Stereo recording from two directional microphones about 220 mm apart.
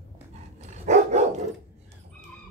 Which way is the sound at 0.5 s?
30° right (ahead or behind).